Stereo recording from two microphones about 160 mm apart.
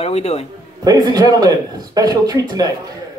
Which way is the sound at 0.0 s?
40° left (ahead or behind).